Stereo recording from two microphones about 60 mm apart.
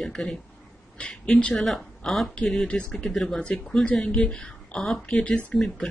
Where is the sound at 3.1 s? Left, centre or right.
Centre.